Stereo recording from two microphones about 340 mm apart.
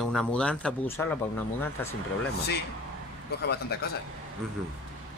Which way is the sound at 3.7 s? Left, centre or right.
Left.